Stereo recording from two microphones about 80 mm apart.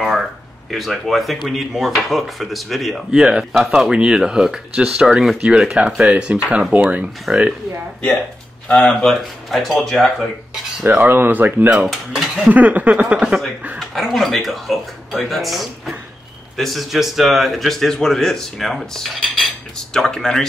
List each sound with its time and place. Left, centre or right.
0.7 s speech: centre
6.7 s speech: right
7.3 s speech: centre
8.6 s speech: centre
10.9 s speech: right
11.7 s speech: centre
12.4 s speech: centre
13.7 s speech: centre